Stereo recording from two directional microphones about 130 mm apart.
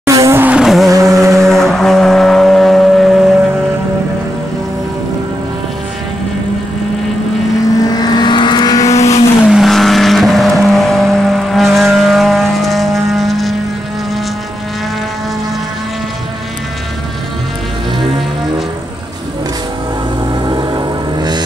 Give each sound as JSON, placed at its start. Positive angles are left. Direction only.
{"t": 0.0, "sound": "vehicle", "side_deg": -25}
{"t": 0.9, "sound": "a sound", "side_deg": -25}
{"t": 1.3, "sound": "vehicle", "side_deg": 0}
{"t": 7.8, "sound": "vehicle", "side_deg": 30}
{"t": 8.9, "sound": "vehicle", "side_deg": 55}
{"t": 9.5, "sound": "vehicle", "side_deg": 0}
{"t": 20.4, "sound": "music", "side_deg": -35}